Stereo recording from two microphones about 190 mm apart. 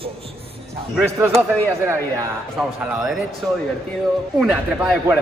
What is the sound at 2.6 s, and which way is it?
Speech, centre (ahead or behind).